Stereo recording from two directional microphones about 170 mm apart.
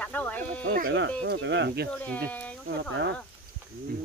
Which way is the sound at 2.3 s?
10° left (ahead or behind).